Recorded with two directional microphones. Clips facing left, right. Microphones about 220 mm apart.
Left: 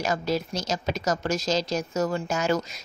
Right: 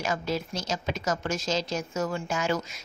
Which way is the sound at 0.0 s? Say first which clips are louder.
Left 3 dB; 40° left (ahead or behind).